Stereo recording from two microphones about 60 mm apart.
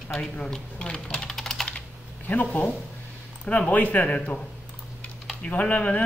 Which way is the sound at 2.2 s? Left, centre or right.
Left.